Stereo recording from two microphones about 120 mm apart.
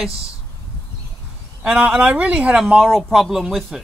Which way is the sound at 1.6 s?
10° right (ahead or behind).